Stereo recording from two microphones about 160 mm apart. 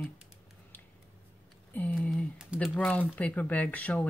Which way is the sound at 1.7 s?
10° left (ahead or behind).